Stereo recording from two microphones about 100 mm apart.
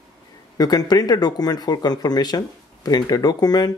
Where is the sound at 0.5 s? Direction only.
40° left (ahead or behind).